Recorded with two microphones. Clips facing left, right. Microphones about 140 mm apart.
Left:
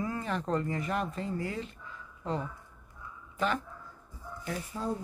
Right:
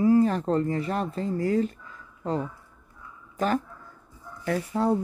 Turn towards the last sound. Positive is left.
turn(degrees=-70)  # may be behind; listen again after turning